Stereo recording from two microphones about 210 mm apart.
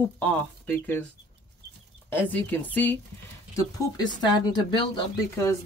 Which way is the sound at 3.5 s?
20° left (ahead or behind).